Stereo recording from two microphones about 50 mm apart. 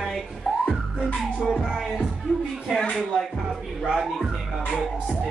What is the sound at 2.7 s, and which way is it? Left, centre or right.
Speech, centre.